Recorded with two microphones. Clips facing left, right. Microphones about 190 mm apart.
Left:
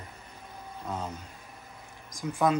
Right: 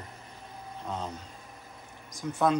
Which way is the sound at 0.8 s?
10° left (ahead or behind).